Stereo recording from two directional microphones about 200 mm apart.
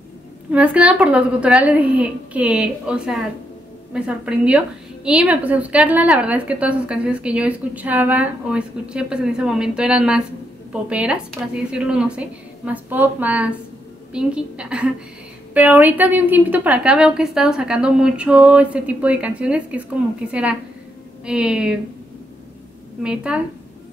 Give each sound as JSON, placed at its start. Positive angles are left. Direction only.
{"t": 0.5, "sound": "a woman's voice", "side_deg": -5}
{"t": 23.0, "sound": "a woman's voice", "side_deg": -5}